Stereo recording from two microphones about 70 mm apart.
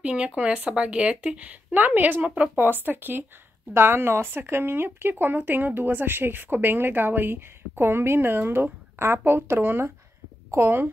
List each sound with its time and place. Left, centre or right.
0.0 s speech: centre; by 10.9 s right